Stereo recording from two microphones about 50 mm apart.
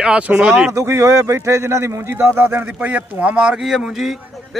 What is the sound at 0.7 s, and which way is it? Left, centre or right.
Speech, right.